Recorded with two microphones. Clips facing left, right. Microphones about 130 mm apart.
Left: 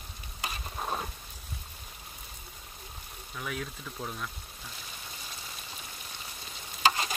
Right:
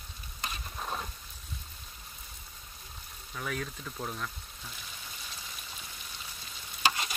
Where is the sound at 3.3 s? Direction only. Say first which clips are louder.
Right 1 dB; centre (ahead or behind).